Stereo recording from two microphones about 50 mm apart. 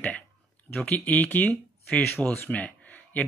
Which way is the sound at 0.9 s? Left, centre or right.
Left.